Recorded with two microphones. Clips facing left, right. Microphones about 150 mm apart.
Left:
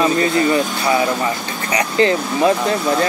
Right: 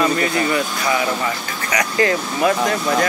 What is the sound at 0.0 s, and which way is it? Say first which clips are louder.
Speech: left 3 dB; 25° left (ahead or behind).